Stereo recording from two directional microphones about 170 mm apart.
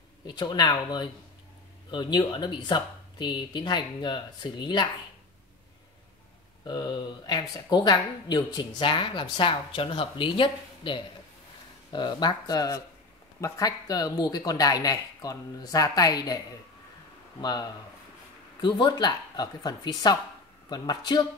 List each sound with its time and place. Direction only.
0.3 s speech: 25° left (ahead or behind)
6.6 s speech: 25° left (ahead or behind)
17.4 s speech: 25° left (ahead or behind)